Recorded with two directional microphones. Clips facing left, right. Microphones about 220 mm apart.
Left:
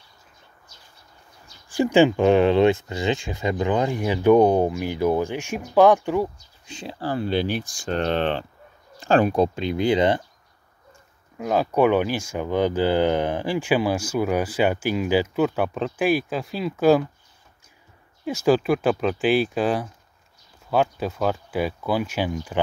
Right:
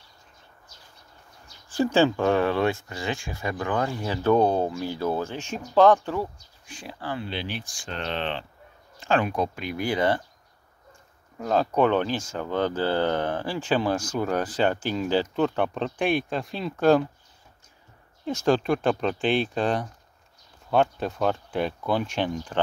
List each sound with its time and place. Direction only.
1.7 s speech: 15° left (ahead or behind)
6.6 s speech: 25° left (ahead or behind)
7.0 s speech: 40° left (ahead or behind); by 10.2 s 20° left (ahead or behind)
11.3 s speech: 10° left (ahead or behind)
18.2 s speech: 5° left (ahead or behind)